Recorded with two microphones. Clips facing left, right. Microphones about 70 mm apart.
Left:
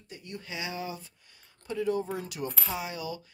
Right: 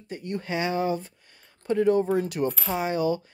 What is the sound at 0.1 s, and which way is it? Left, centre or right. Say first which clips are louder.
Speech: right 10 dB; right.